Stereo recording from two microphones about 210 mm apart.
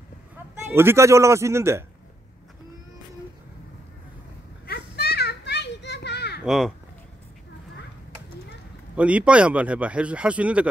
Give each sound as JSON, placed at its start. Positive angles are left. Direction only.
{"t": 0.7, "sound": "a man's voice", "side_deg": -10}
{"t": 4.6, "sound": "children playing", "side_deg": 50}
{"t": 6.4, "sound": "speech", "side_deg": 0}
{"t": 8.9, "sound": "speech", "side_deg": -5}